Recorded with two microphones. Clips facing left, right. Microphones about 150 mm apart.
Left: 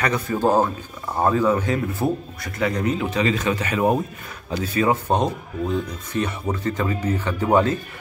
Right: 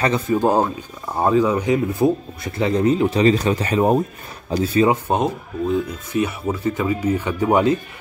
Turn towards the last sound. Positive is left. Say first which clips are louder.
# right 2 dB
turn(degrees=-15)  # may be behind; listen again after turning